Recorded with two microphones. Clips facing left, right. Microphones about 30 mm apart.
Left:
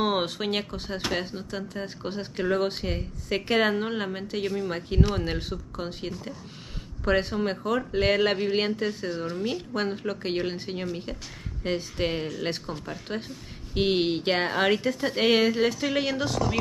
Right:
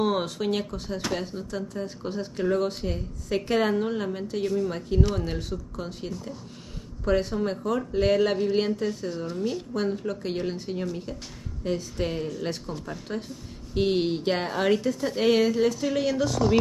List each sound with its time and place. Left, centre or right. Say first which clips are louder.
0.0 s speech: even; left
12.7 s speech: even; left